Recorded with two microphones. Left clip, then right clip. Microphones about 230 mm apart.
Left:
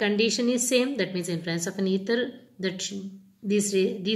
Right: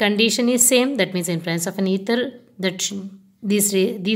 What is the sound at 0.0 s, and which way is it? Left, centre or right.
A woman's voice, right.